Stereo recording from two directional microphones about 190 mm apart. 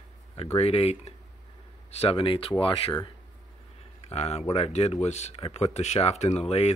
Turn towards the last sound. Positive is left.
turn(degrees=35)  # may be behind; listen again after turning